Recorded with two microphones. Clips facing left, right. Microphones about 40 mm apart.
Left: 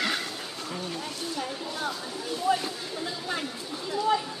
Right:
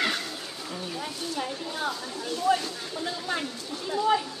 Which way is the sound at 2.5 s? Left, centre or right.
Centre.